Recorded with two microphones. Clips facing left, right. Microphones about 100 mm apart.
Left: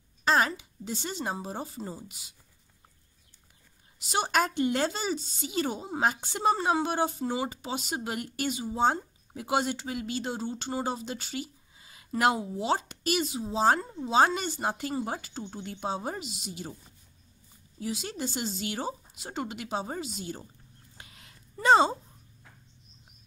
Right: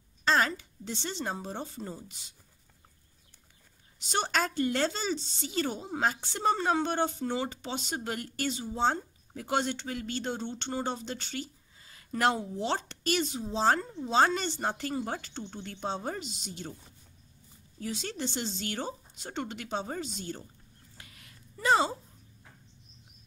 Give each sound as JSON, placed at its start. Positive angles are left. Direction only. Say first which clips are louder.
{"t": 0.2, "sound": "speech", "louder": "left 2 dB", "side_deg": 15}
{"t": 4.0, "sound": "speech", "louder": "left 3 dB", "side_deg": 10}
{"t": 17.7, "sound": "speech", "louder": "left 2 dB", "side_deg": 10}
{"t": 21.0, "sound": "a sound", "louder": "left 2 dB", "side_deg": 25}